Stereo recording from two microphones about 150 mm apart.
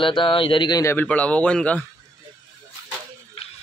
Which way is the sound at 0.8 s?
15° left (ahead or behind).